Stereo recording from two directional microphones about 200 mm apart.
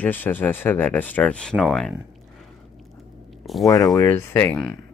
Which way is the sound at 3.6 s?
20° left (ahead or behind).